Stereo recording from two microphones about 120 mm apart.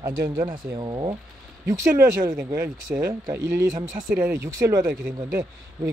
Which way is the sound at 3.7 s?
90° right.